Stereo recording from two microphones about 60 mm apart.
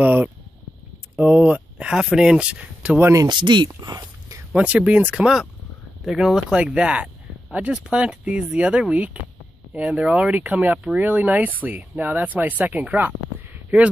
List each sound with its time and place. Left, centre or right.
0.0 s speech: right
3.1 s speech: right
4.6 s speech: right
6.6 s speech: centre